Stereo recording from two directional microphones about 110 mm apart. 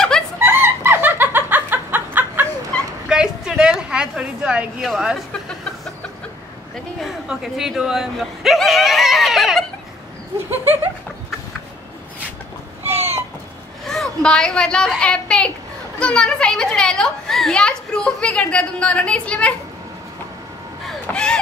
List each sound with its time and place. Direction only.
0.4 s fowl: 20° right (ahead or behind)
3.1 s a sound: 5° right (ahead or behind)
4.8 s speech: centre (ahead or behind)
7.0 s speech: 5° right (ahead or behind)
12.8 s chicken: 20° right (ahead or behind)
13.8 s a woman's voice: 5° left (ahead or behind)
20.8 s a sound: 10° left (ahead or behind)